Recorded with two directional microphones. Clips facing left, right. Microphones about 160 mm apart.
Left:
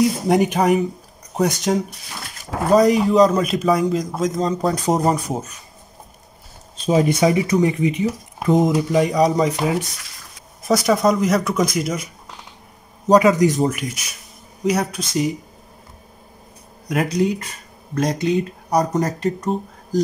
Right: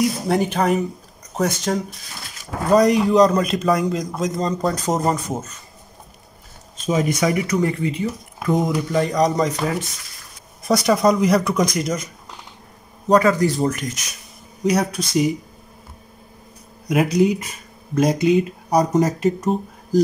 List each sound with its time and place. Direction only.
0.3 s speech: 15° left (ahead or behind)
2.7 s speech: centre (ahead or behind)
6.9 s speech: 30° left (ahead or behind); by 9.6 s 5° left (ahead or behind)
10.6 s speech: centre (ahead or behind)
13.2 s speech: 15° left (ahead or behind)
13.7 s speech: 5° left (ahead or behind)
16.9 s speech: 5° right (ahead or behind)